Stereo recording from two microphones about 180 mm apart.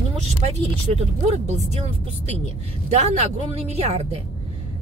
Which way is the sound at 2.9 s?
35° right (ahead or behind).